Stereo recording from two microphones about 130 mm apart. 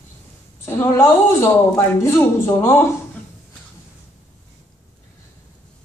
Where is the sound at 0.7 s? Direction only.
20° left (ahead or behind).